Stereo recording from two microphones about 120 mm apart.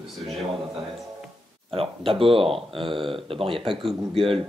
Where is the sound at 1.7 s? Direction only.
50° right (ahead or behind).